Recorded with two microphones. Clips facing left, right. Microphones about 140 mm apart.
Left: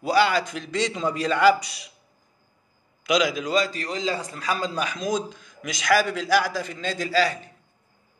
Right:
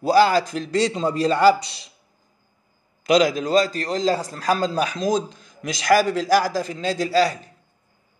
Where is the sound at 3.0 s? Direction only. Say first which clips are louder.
Right 5 dB; 35° right (ahead or behind).